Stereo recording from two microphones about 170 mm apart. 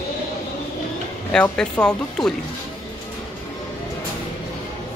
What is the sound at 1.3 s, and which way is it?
Speech, 5° left (ahead or behind).